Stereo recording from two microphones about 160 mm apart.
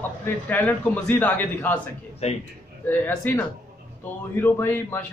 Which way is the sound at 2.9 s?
10° left (ahead or behind).